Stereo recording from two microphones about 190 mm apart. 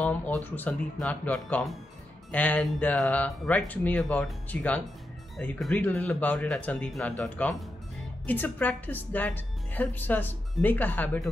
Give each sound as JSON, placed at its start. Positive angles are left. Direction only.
{"t": 0.0, "sound": "speech", "side_deg": 5}